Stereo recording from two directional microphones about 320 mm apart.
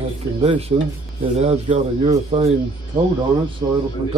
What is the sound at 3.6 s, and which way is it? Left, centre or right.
Speech, centre.